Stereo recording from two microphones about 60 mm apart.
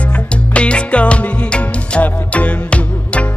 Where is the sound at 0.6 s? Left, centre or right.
Centre.